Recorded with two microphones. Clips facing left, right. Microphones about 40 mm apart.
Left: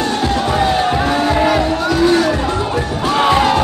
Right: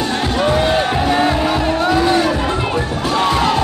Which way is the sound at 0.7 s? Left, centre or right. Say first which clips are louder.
Even; centre.